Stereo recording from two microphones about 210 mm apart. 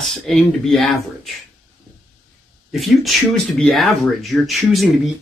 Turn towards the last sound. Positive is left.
turn(degrees=0)  # may be behind; listen again after turning